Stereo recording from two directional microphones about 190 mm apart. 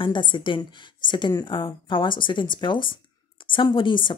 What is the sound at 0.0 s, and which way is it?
Speech, 25° left (ahead or behind).